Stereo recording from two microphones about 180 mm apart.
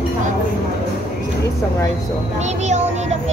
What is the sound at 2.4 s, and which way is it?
Child singing, 40° right (ahead or behind).